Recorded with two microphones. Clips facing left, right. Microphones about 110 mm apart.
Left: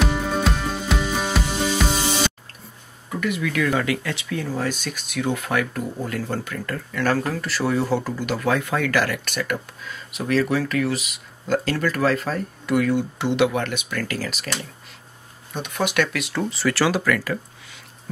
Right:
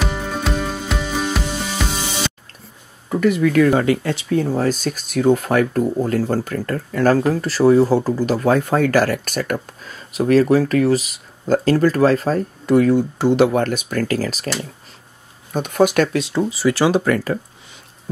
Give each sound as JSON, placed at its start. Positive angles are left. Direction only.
{"t": 0.0, "sound": "music", "side_deg": 0}
{"t": 3.1, "sound": "speech", "side_deg": -40}
{"t": 15.5, "sound": "speech", "side_deg": -45}
{"t": 16.3, "sound": "speech", "side_deg": -15}